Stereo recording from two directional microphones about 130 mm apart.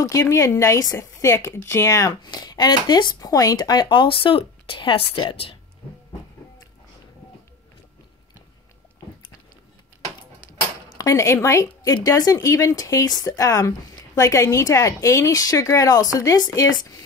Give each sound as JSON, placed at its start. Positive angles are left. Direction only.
{"t": 0.0, "sound": "speech", "side_deg": 25}
{"t": 11.0, "sound": "speech", "side_deg": 25}